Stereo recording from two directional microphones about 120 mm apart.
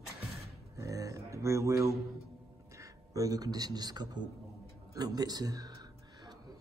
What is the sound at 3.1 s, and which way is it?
A man's voice, 30° right (ahead or behind).